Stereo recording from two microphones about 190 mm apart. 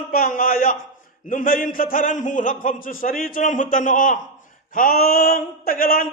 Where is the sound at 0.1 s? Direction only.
50° left (ahead or behind).